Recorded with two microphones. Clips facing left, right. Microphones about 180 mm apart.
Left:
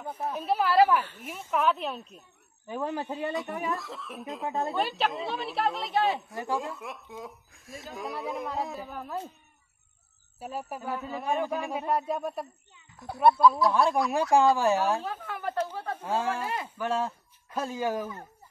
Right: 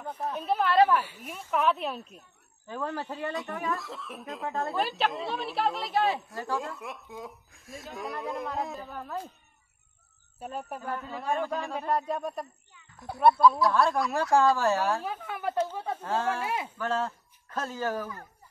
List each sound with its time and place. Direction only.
0.0 s speech: 5° left (ahead or behind)
2.6 s speech: 15° left (ahead or behind)
3.7 s speech: centre (ahead or behind)
6.3 s speech: 20° left (ahead or behind)
6.6 s speech: centre (ahead or behind)
10.4 s speech: 5° left (ahead or behind)
14.6 s speech: 15° left (ahead or behind)
15.4 s speech: 10° right (ahead or behind)
16.0 s speech: 10° left (ahead or behind)